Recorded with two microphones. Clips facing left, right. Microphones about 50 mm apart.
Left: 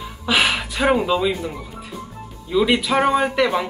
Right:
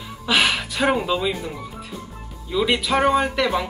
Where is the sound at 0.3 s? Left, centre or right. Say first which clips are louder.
Left 1 dB; centre.